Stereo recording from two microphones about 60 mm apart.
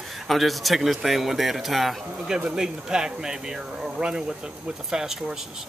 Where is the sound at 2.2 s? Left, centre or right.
Centre.